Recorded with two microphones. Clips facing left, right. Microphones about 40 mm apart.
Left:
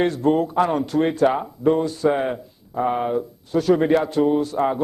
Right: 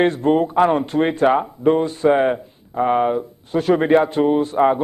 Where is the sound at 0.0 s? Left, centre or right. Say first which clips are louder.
Right 3 dB; right.